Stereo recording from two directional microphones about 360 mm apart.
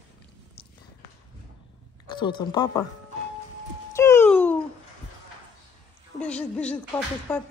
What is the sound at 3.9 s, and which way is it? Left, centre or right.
Wail, centre.